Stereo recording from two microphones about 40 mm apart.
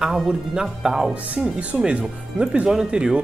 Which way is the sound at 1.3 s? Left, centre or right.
Right.